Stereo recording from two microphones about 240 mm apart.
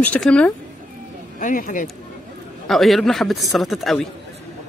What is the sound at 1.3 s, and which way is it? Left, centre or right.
Speech, left.